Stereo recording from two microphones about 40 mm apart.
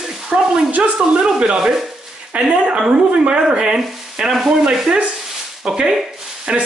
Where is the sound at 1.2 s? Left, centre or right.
Right.